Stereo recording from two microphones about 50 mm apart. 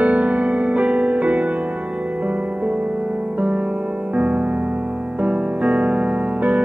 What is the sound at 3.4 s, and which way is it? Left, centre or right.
Music, right.